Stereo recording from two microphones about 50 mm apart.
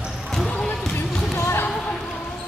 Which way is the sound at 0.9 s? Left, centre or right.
Left.